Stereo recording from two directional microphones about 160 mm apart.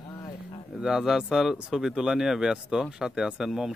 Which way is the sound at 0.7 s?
5° right (ahead or behind).